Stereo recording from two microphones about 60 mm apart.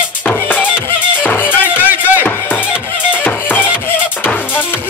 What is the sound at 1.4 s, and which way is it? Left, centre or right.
Music, right.